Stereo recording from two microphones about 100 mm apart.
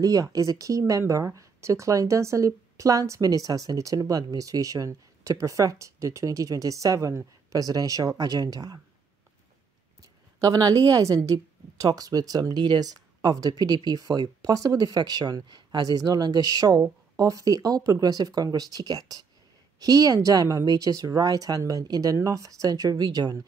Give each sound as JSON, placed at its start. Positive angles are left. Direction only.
{"t": 0.0, "sound": "speech", "side_deg": -35}
{"t": 10.4, "sound": "speech", "side_deg": -35}